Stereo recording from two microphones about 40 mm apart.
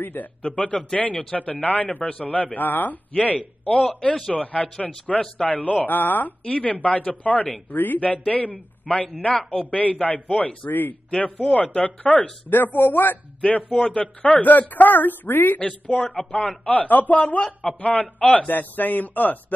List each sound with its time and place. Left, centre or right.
0.0 s a man's voice: left
0.4 s speech: left
3.9 s a woman's voice: left
6.4 s speech: left
8.3 s speech: left
10.7 s a man's voice: left
11.1 s speech: left
12.4 s a woman's voice: left
13.4 s a woman's voice: left
15.6 s a woman's voice: left